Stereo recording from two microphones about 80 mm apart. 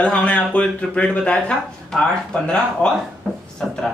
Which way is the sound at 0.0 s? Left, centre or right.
Centre.